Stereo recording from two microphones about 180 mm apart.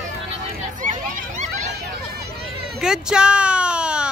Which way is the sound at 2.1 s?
60° right (ahead or behind).